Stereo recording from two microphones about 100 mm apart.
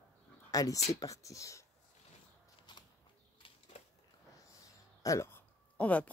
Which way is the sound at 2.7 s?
50° left (ahead or behind).